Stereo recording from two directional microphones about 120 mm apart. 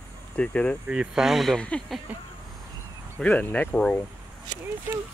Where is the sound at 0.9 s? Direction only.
5° right (ahead or behind).